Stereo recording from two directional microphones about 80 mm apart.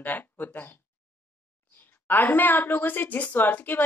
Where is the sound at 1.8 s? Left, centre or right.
Left.